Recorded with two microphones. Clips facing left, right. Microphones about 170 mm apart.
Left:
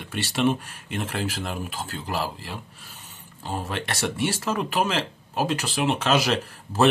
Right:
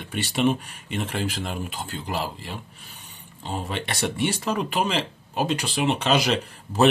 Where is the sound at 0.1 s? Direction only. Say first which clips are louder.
Right 1 dB; centre (ahead or behind).